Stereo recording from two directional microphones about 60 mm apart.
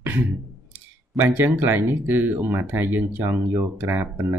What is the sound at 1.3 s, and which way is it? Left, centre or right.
Speech, right.